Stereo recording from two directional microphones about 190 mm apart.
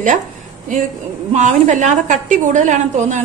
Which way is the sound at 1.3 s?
40° right (ahead or behind).